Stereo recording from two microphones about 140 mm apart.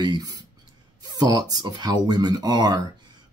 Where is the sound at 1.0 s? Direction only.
30° right (ahead or behind).